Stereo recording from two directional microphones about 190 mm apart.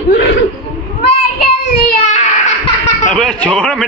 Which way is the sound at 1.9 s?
40° left (ahead or behind).